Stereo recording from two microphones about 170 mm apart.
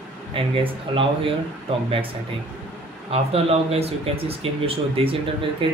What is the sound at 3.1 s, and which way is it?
Speech, 35° right (ahead or behind).